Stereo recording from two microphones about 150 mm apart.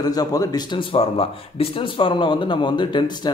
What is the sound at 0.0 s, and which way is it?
Speech, 25° left (ahead or behind).